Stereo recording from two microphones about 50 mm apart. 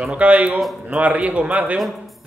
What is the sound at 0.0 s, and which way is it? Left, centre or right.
Speech, right.